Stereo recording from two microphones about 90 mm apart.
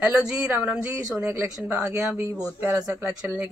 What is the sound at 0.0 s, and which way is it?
Speech, 10° right (ahead or behind).